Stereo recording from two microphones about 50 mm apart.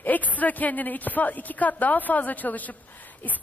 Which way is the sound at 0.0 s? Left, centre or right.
Left.